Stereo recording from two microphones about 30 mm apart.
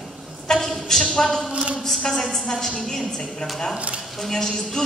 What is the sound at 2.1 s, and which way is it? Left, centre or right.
Speech, centre.